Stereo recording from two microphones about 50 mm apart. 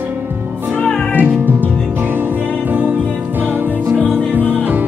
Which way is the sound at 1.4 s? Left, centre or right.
Right.